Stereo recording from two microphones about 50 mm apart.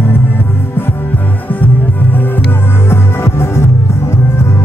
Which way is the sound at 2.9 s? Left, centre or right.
Left.